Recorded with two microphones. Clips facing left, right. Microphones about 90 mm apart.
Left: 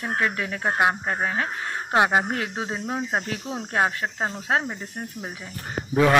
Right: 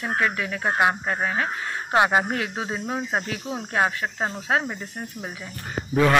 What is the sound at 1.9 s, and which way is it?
Speech, 10° left (ahead or behind).